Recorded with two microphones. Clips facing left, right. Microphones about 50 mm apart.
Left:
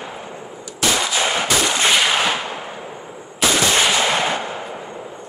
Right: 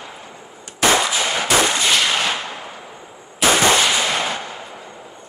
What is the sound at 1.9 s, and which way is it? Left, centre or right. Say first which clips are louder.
Gunshot: left 2 dB; centre.